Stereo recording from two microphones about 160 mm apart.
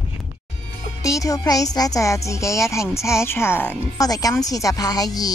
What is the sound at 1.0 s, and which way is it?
A woman's voice, 20° left (ahead or behind).